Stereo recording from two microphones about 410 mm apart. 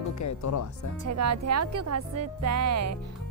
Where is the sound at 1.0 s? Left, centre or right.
Right.